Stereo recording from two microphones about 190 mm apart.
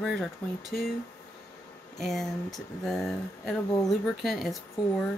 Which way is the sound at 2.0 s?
Centre (ahead or behind).